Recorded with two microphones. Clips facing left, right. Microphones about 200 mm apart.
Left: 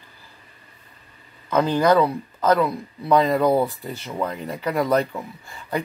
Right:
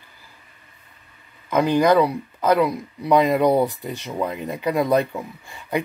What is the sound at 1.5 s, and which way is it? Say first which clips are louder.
A man's voice: right 1 dB; 15° right (ahead or behind).